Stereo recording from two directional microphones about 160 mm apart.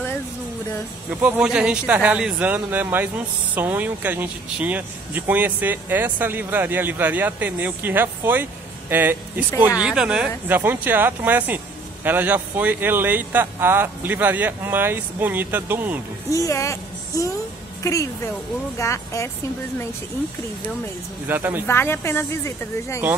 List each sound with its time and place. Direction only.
1.2 s speech: 10° right (ahead or behind)
16.3 s speech: 20° left (ahead or behind)
18.8 s speech: 20° left (ahead or behind)
21.3 s speech: 10° right (ahead or behind)
21.6 s a woman's voice: 15° left (ahead or behind)